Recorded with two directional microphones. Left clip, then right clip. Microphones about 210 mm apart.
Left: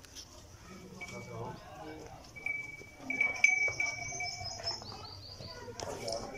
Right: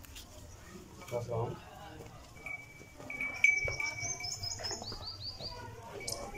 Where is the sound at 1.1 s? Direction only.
35° right (ahead or behind).